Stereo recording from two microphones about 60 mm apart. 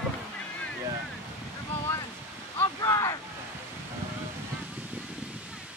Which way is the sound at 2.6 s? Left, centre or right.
Left.